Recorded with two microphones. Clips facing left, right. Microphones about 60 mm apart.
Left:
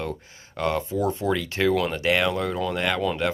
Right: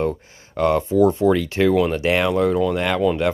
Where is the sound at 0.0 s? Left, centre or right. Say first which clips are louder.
Right 8 dB; right.